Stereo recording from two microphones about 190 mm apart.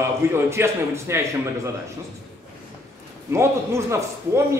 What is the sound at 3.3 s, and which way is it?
A man's voice, 15° right (ahead or behind).